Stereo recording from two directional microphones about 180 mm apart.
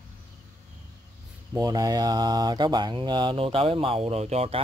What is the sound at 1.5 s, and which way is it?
Speech, 20° right (ahead or behind).